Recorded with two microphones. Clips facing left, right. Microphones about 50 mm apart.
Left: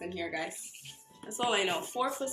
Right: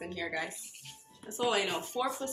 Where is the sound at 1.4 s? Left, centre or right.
Left.